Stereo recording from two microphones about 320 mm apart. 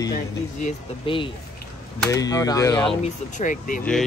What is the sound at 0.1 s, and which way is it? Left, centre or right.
Speech, left.